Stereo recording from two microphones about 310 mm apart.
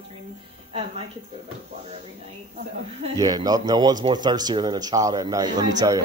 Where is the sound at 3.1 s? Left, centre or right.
Centre.